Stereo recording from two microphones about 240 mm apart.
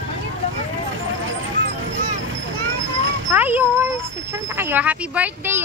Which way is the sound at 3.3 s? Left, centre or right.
Centre.